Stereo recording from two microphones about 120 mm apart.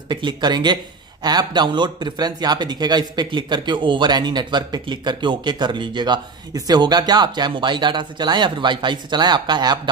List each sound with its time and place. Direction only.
0.1 s speech: 40° right (ahead or behind)